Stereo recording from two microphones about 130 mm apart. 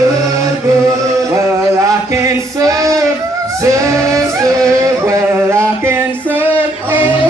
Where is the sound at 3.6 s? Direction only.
25° right (ahead or behind).